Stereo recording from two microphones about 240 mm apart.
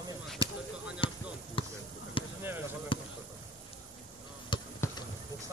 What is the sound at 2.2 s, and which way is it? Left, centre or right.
Basketball bounce, left.